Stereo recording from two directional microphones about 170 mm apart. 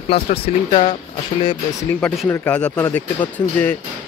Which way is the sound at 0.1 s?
30° left (ahead or behind).